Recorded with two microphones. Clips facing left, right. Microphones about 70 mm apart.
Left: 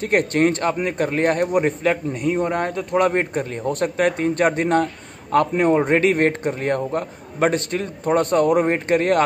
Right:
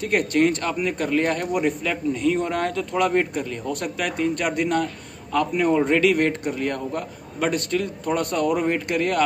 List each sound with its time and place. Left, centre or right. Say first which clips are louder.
0.0 s a man's voice: left 2 dB; left